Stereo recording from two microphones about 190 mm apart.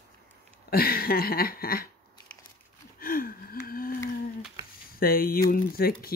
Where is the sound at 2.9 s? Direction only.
50° left (ahead or behind).